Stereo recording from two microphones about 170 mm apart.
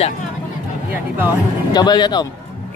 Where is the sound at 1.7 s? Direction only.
25° left (ahead or behind).